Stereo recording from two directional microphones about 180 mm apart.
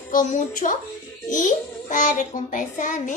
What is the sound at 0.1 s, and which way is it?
A child's voice, 45° left (ahead or behind).